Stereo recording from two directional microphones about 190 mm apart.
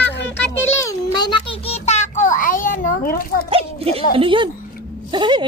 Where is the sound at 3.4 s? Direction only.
30° right (ahead or behind).